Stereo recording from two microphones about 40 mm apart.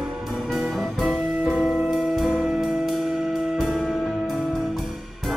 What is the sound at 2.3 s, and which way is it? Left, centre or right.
Music, centre.